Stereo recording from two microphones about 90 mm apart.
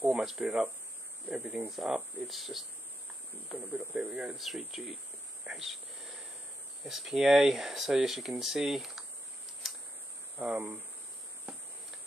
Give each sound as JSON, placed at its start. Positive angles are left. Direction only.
{"t": 0.1, "sound": "speech", "side_deg": -5}
{"t": 1.3, "sound": "speech", "side_deg": -15}
{"t": 1.7, "sound": "speech", "side_deg": 0}
{"t": 3.5, "sound": "speech", "side_deg": -20}
{"t": 6.8, "sound": "speech", "side_deg": -5}
{"t": 10.4, "sound": "speech", "side_deg": -20}